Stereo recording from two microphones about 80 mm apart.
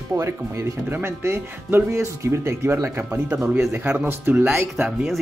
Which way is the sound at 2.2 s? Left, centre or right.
Right.